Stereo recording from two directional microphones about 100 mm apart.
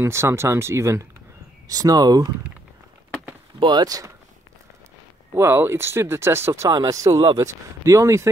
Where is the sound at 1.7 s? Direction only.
40° right (ahead or behind).